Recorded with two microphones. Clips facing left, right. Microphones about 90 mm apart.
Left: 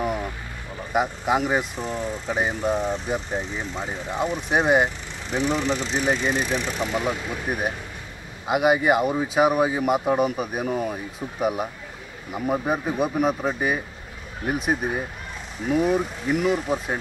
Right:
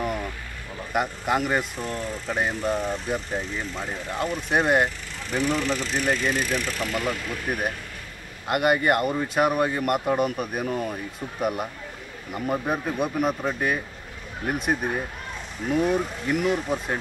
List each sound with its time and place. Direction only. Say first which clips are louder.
0.0 s vehicle: left 2 dB; 5° left (ahead or behind)
0.7 s speech: left 2 dB; centre (ahead or behind)